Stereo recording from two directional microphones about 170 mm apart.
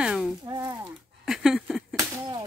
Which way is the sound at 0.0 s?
5° right (ahead or behind).